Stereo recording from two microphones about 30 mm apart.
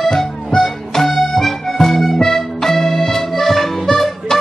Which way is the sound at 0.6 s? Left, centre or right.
Centre.